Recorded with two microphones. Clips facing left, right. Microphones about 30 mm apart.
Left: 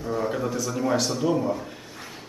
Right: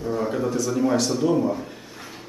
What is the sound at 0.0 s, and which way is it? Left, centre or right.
Speech, centre.